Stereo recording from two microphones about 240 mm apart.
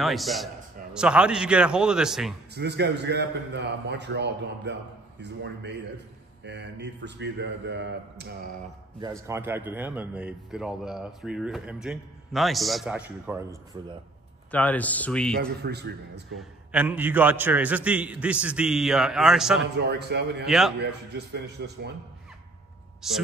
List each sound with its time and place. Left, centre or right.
0.0 s a man's voice: centre
2.5 s a man's voice: right
9.0 s a man's voice: centre
14.5 s speech: centre
15.6 s a man's voice: right
16.3 s a man's voice: centre
19.9 s a man's voice: right
20.4 s a man's voice: centre
20.8 s a man's voice: right
23.0 s a man's voice: centre